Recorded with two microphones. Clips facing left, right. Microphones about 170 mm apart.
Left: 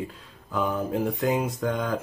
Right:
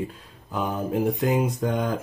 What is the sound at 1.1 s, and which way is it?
Speech, 20° right (ahead or behind).